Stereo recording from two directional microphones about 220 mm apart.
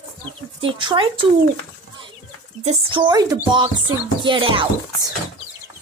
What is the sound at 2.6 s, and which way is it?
Speech, 30° right (ahead or behind).